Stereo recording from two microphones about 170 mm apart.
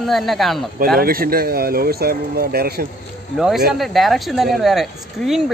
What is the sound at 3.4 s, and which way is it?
Speech, centre (ahead or behind).